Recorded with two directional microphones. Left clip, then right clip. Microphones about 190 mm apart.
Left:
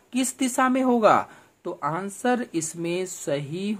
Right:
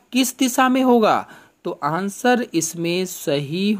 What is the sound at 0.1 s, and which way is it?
Speech, 25° right (ahead or behind).